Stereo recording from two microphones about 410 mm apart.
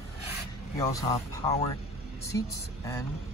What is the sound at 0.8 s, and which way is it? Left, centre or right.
Speech, centre.